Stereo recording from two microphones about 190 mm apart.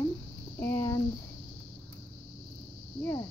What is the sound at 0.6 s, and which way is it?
Speech, 15° left (ahead or behind).